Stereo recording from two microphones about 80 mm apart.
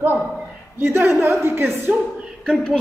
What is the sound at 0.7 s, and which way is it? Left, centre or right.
A woman's voice, right.